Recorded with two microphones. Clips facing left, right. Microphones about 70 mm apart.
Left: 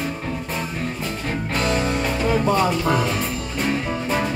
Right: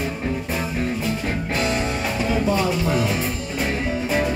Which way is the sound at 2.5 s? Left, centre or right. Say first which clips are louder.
Left 2 dB; left.